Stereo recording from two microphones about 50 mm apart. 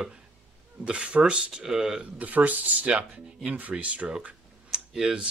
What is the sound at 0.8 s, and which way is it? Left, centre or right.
Speech, right.